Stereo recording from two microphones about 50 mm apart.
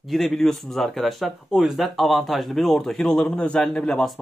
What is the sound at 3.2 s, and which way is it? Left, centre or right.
Speech, centre.